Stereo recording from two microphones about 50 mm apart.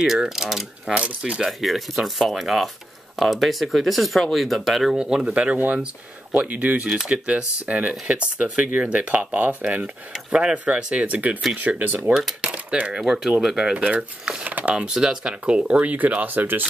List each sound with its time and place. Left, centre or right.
0.4 s coin: centre
0.9 s speech: right
1.6 s speech: centre
4.9 s coin: centre
5.3 s speech: right
10.3 s coin: centre
10.6 s speech: right
12.1 s coin: centre
12.4 s coin: right
13.7 s speech: right
14.5 s a sound: right
14.8 s speech: centre; by 16.6 s right